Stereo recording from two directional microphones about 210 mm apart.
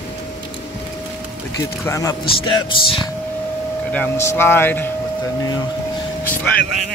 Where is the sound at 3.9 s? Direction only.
10° left (ahead or behind).